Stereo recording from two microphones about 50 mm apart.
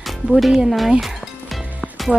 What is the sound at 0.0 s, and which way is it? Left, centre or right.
Speech, centre.